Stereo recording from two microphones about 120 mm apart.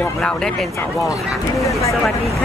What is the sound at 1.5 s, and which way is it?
Speech, 25° left (ahead or behind).